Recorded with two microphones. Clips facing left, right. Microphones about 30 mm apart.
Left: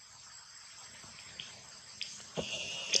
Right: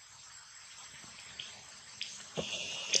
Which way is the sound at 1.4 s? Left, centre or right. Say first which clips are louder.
Right 1 dB; right.